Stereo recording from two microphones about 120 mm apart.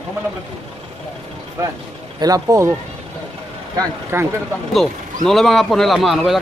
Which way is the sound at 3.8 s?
20° right (ahead or behind).